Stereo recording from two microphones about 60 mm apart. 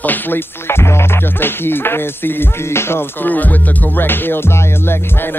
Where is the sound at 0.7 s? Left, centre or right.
Left.